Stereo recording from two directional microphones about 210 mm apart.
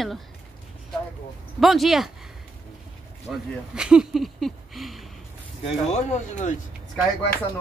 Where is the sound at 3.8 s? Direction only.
5° right (ahead or behind).